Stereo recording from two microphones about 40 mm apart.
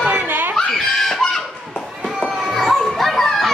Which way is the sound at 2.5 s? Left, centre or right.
Centre.